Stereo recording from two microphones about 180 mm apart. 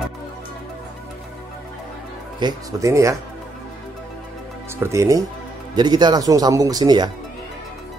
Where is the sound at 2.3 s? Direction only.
20° right (ahead or behind).